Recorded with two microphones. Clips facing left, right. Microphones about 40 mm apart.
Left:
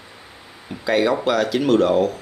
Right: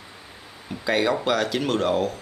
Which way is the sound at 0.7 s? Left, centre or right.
Centre.